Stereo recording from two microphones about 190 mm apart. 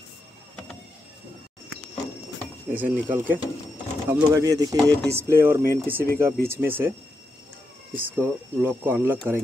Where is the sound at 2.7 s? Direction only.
10° right (ahead or behind).